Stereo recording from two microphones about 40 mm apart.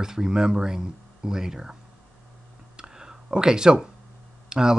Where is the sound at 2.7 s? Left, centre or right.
Centre.